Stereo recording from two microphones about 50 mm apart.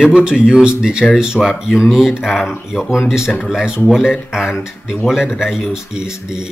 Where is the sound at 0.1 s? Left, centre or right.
Centre.